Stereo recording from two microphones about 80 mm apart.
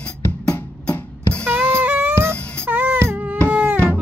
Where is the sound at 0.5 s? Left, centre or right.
Centre.